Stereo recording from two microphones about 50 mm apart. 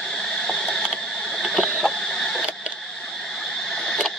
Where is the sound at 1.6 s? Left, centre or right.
Left.